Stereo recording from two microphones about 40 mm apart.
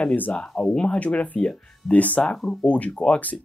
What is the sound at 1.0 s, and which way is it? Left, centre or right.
Speech, left.